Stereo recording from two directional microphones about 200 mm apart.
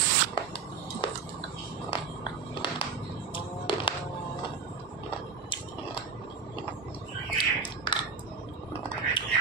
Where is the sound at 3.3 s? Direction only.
25° left (ahead or behind).